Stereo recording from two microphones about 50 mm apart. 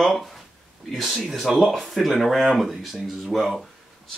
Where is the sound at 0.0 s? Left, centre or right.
Centre.